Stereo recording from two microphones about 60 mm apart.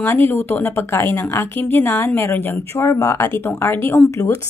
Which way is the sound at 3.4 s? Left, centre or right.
Left.